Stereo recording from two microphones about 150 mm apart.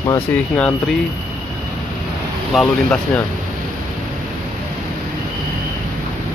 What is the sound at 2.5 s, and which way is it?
Speech, 5° left (ahead or behind).